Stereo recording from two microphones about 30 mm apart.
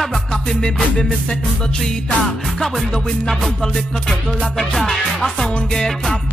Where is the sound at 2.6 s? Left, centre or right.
Centre.